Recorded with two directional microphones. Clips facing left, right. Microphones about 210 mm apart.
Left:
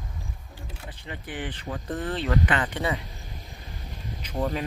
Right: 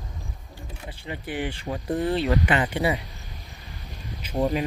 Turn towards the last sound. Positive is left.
turn(degrees=-20)  # may be behind; listen again after turning